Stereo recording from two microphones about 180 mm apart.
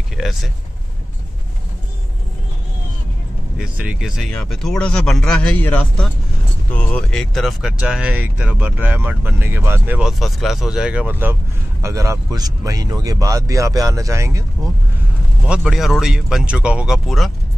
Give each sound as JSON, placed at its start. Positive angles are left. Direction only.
{"t": 0.2, "sound": "speech", "side_deg": 0}
{"t": 3.5, "sound": "speech", "side_deg": -5}
{"t": 15.4, "sound": "speech", "side_deg": -5}